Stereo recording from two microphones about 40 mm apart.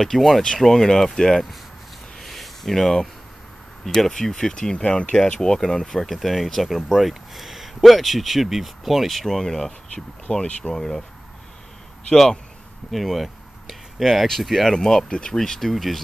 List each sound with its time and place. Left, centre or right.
0.0 s speech: centre
2.1 s a sound: centre
3.8 s speech: centre
6.0 s speech: centre
9.2 s speech: centre; by 10.4 s left
10.7 s speech: centre
12.9 s a sound: centre
14.4 s speech: centre
14.8 s speech: centre
15.3 s speech: centre
15.7 s speech: centre